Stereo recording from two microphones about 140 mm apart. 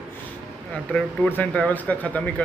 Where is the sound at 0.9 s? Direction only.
10° left (ahead or behind).